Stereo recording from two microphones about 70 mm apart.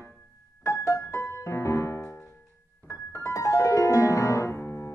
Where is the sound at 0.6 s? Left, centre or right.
Left.